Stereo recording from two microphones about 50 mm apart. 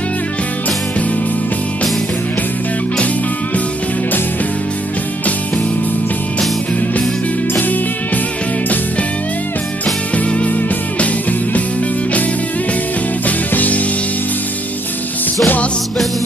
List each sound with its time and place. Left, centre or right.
10.1 s music: left
13.5 s music: left
15.4 s music: left